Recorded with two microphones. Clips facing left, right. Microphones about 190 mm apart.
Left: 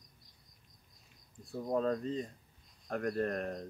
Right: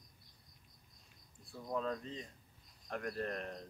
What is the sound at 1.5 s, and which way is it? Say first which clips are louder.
Speech: left 7 dB; 40° left (ahead or behind).